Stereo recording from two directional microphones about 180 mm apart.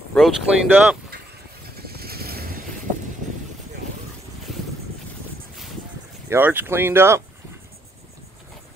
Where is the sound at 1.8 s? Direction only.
60° right (ahead or behind).